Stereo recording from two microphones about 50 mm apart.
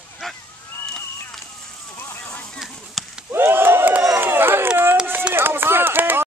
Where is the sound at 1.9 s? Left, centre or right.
Left.